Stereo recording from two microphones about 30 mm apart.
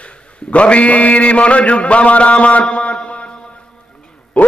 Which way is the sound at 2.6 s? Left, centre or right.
Left.